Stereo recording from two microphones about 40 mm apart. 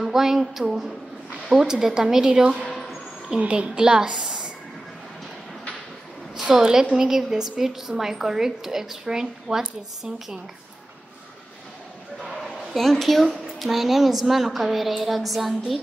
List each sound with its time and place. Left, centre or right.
0.0 s speech: centre
2.7 s a sound: centre
3.3 s a woman's voice: right
6.5 s speech: centre
13.0 s a woman's voice: centre